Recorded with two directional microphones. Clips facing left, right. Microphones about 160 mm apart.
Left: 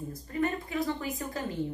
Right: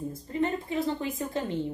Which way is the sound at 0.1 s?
25° right (ahead or behind).